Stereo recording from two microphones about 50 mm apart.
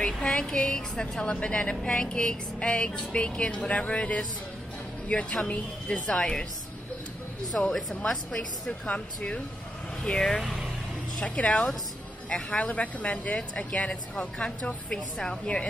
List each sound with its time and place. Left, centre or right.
0.0 s speech: centre
5.4 s speech: left
7.5 s a woman's voice: left
8.8 s speech: left
10.0 s a woman's voice: centre
11.2 s a woman's voice: left